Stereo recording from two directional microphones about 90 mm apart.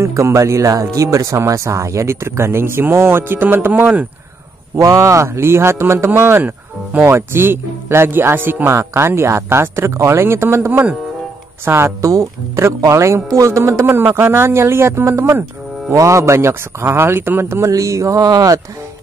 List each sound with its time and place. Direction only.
0.0 s speech: 35° right (ahead or behind)
4.7 s speech: 35° right (ahead or behind)
10.7 s speech: 20° right (ahead or behind)
12.0 s speech: 35° right (ahead or behind)